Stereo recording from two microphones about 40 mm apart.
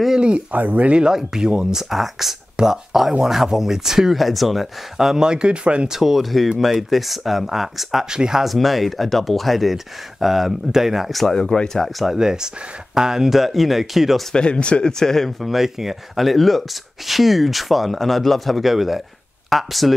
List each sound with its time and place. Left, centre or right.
0.5 s speech: right
0.9 s speech: centre
4.9 s speech: centre
5.9 s speech: centre
8.1 s speech: centre
8.5 s speech: centre
11.2 s speech: centre
12.2 s speech: centre
14.3 s speech: left; by 19.9 s centre